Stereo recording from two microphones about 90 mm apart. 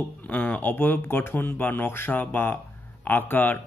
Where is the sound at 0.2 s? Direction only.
15° left (ahead or behind).